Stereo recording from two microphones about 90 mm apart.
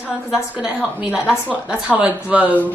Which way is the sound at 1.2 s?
15° left (ahead or behind).